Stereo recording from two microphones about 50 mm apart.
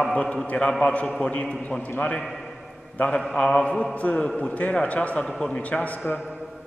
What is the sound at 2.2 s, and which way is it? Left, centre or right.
Speech, centre.